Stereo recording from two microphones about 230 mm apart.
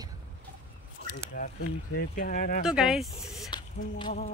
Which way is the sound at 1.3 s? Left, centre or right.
Left.